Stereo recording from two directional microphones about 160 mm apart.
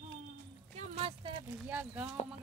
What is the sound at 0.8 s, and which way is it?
Speech, 40° right (ahead or behind).